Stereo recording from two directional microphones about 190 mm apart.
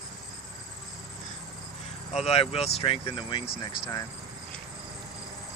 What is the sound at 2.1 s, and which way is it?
Speech, 35° left (ahead or behind).